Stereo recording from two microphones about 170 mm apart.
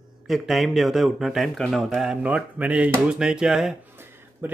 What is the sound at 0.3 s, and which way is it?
Speech, centre (ahead or behind).